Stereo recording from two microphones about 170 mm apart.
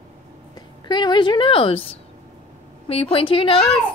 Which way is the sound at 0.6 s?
25° left (ahead or behind).